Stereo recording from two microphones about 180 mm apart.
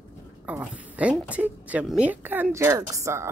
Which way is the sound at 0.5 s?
5° right (ahead or behind).